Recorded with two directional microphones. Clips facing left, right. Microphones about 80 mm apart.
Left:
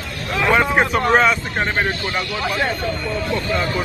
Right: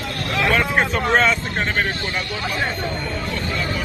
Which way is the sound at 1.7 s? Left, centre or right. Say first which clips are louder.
Left 2 dB; left.